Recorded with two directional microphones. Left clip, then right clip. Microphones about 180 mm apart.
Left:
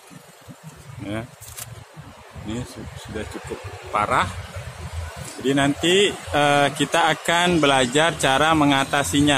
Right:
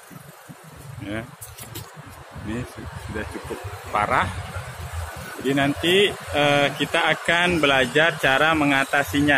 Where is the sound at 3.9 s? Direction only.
15° left (ahead or behind).